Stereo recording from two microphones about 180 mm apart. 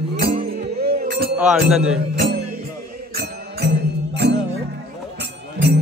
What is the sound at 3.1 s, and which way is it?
Music, 65° right (ahead or behind).